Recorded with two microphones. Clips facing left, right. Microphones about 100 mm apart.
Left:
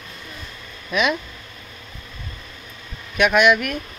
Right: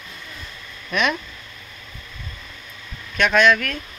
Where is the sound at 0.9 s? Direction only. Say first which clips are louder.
Left 1 dB; 5° left (ahead or behind).